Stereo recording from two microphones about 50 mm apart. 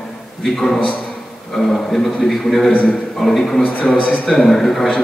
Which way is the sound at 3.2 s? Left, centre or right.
Centre.